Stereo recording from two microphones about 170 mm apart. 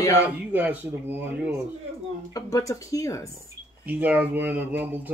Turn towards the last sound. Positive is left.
turn(degrees=-10)  # may be behind; listen again after turning